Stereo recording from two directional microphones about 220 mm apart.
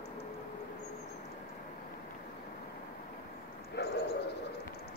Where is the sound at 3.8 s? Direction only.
50° left (ahead or behind).